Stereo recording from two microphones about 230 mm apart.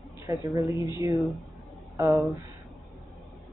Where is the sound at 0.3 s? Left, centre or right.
Centre.